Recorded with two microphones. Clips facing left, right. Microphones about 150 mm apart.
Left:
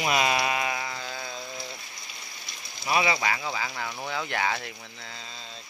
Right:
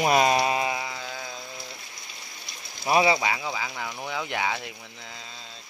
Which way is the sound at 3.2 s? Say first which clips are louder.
Right 1 dB; 15° right (ahead or behind).